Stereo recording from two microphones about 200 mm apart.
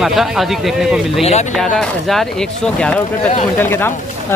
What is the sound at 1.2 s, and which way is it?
Speech, 35° left (ahead or behind).